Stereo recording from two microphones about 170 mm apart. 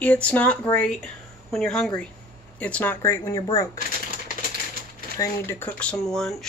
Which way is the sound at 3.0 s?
20° left (ahead or behind).